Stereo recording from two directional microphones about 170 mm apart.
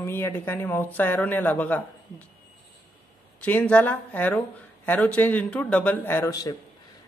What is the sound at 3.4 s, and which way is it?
A woman's voice, 10° left (ahead or behind).